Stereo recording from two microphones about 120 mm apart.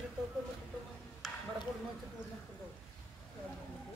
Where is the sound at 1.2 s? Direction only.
Centre (ahead or behind).